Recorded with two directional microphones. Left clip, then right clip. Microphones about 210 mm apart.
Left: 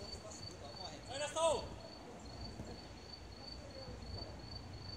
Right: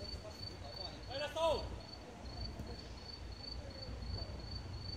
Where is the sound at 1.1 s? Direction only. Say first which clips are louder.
Even; 30° left (ahead or behind).